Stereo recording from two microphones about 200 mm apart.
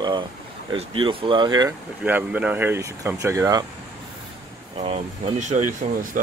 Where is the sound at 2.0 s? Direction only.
10° right (ahead or behind).